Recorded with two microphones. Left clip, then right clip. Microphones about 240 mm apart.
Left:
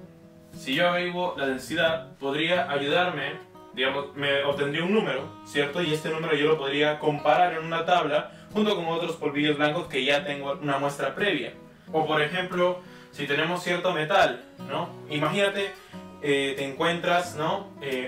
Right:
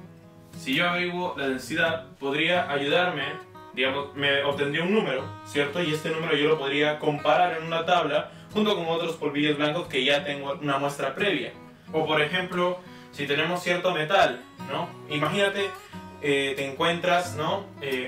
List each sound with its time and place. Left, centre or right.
0.7 s speech: centre